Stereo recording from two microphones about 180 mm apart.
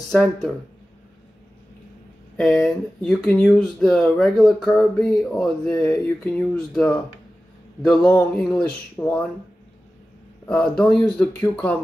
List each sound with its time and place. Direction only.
0.1 s speech: 5° left (ahead or behind)
2.3 s speech: 5° left (ahead or behind)
10.5 s speech: 5° left (ahead or behind)